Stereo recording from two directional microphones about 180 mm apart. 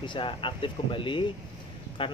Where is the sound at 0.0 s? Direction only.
25° left (ahead or behind).